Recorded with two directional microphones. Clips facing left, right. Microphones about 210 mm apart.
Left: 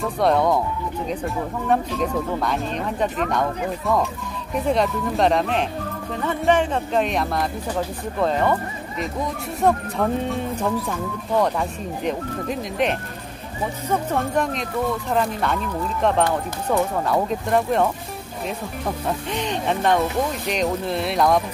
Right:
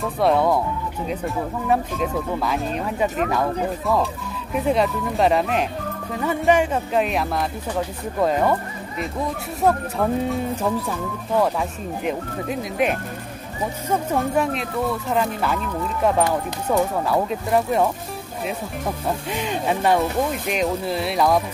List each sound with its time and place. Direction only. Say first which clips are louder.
0.0 s speech: even; centre (ahead or behind)
6.2 s music: right 1 dB; 10° right (ahead or behind)
8.2 s speech: right 1 dB; 10° right (ahead or behind)
19.3 s speech: even; 5° right (ahead or behind)